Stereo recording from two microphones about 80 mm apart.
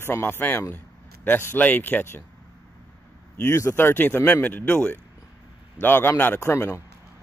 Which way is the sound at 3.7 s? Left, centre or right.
Left.